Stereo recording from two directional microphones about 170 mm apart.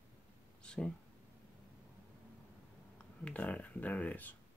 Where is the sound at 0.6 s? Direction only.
5° left (ahead or behind).